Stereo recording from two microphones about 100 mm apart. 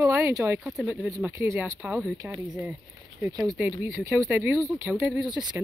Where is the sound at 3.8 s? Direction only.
25° right (ahead or behind).